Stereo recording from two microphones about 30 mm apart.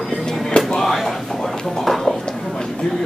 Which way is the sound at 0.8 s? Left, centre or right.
Centre.